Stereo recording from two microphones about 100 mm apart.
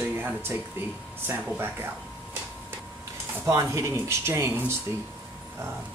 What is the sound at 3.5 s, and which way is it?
Speech, 30° right (ahead or behind).